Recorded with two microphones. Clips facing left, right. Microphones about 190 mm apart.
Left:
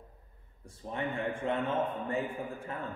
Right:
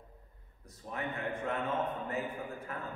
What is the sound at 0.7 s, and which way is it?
A man's voice, 30° left (ahead or behind).